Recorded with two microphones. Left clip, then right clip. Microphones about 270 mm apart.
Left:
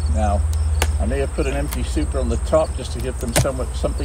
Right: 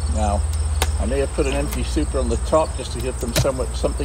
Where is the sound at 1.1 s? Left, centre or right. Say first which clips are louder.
Right 3 dB; centre.